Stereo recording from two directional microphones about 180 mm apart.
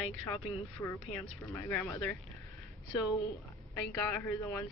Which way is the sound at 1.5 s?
10° left (ahead or behind).